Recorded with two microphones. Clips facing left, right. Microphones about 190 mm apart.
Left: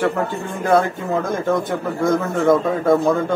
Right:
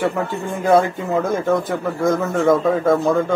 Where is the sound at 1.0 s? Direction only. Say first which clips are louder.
Right 1 dB; centre (ahead or behind).